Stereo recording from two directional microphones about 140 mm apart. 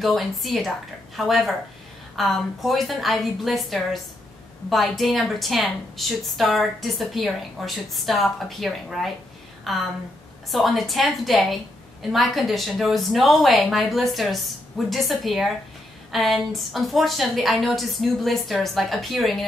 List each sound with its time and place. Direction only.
0.0 s a woman's voice: centre (ahead or behind)